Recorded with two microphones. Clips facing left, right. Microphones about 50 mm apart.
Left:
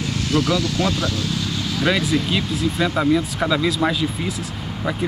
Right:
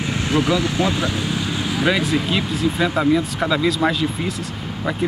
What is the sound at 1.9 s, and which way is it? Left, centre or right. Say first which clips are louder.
Speech: even; centre.